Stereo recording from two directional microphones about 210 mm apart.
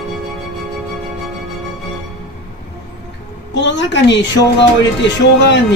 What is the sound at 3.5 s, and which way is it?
Speech, 55° left (ahead or behind).